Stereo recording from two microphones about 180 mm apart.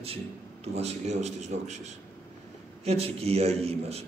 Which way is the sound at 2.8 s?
35° right (ahead or behind).